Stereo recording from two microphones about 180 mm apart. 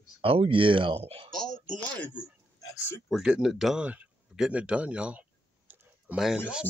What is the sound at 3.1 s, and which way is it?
Speech, 5° right (ahead or behind).